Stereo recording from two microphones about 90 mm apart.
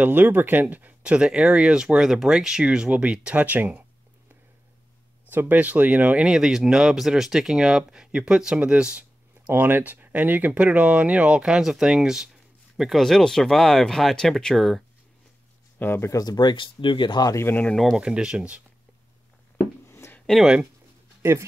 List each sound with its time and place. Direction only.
0.0 s speech: 20° right (ahead or behind)
5.3 s speech: 20° right (ahead or behind)
9.5 s speech: 20° right (ahead or behind); by 14.8 s 5° left (ahead or behind)
15.8 s speech: 25° left (ahead or behind)
16.2 s speech: 50° left (ahead or behind)
17.5 s speech: 15° left (ahead or behind)
17.7 s speech: centre (ahead or behind)
19.9 s a sound: 30° left (ahead or behind)
20.2 s a sound: 5° left (ahead or behind)
21.2 s speech: 30° right (ahead or behind)